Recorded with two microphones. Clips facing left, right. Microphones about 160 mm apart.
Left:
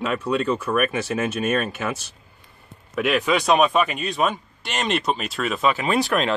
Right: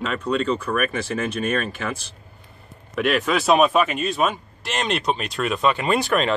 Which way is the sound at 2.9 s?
Centre (ahead or behind).